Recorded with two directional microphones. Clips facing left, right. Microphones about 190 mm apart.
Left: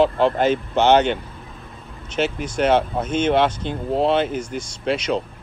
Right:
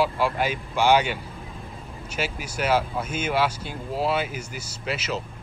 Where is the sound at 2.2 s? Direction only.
10° right (ahead or behind).